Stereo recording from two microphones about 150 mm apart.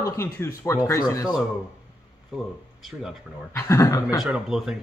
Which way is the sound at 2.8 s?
5° right (ahead or behind).